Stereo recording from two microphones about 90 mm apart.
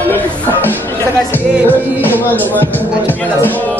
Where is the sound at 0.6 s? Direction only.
25° left (ahead or behind).